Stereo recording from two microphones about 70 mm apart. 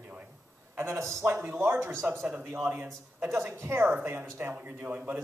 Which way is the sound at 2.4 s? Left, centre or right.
Right.